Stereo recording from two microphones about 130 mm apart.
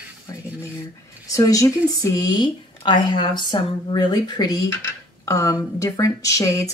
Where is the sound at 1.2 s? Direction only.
25° left (ahead or behind).